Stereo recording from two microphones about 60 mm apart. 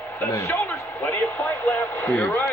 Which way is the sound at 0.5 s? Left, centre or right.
Left.